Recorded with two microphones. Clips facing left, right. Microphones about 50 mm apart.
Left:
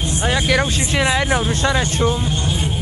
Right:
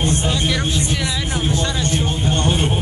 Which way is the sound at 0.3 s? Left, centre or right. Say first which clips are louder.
Left 3 dB; left.